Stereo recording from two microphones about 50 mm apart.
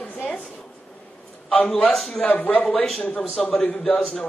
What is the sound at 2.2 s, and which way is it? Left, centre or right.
Speech, left.